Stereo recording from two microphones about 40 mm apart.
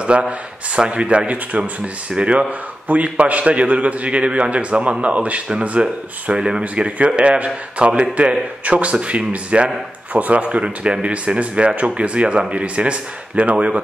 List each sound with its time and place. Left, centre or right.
0.1 s speech: right
2.9 s a man's voice: right
6.3 s speech: centre
7.2 s a man's voice: right